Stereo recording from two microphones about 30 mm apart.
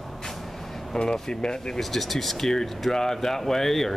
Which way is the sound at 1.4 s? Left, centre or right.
Left.